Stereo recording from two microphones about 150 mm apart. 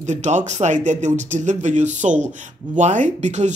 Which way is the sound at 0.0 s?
50° right (ahead or behind).